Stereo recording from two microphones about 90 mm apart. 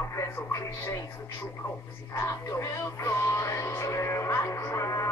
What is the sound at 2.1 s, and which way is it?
Speech, 30° left (ahead or behind).